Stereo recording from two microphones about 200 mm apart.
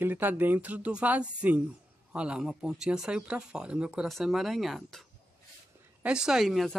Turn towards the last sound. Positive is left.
turn(degrees=0)  # may be behind; listen again after turning